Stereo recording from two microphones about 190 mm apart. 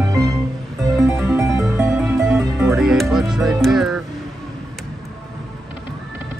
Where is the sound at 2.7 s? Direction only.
Centre (ahead or behind).